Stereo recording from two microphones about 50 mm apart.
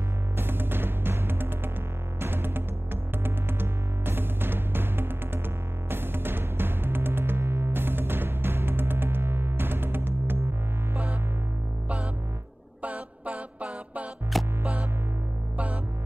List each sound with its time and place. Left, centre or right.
0.4 s music: right
12.8 s a sound: right
14.6 s music: right